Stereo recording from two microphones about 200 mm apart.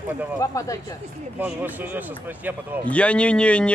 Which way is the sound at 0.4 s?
15° left (ahead or behind).